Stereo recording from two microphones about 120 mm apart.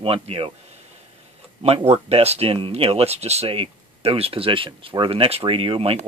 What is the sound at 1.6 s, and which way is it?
Speech, 60° right (ahead or behind).